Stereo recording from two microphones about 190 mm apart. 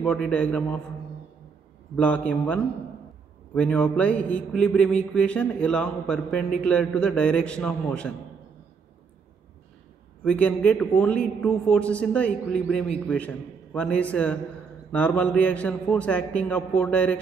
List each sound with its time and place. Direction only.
0.0 s speech: 5° left (ahead or behind)
2.0 s a man's voice: 5° left (ahead or behind)
10.2 s a man's voice: 5° left (ahead or behind)